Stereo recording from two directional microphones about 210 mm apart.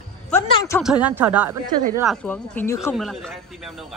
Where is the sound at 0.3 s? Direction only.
10° left (ahead or behind).